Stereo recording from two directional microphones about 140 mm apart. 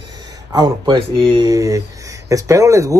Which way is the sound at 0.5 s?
35° right (ahead or behind).